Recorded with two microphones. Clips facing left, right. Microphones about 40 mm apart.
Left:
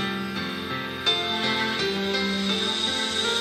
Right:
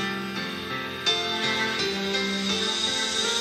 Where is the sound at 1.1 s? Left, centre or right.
Left.